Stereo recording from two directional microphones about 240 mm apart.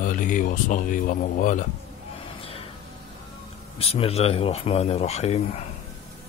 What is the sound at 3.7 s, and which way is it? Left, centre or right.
Speech, left.